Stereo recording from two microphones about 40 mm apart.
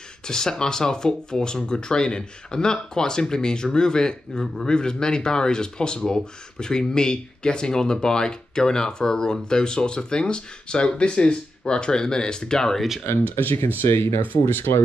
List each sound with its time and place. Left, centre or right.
0.2 s speech: centre
13.7 s speech: left